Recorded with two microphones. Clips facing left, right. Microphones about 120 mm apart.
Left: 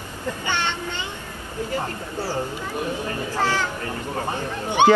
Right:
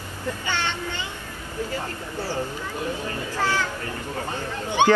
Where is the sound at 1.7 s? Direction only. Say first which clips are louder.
Left 3 dB; 40° left (ahead or behind).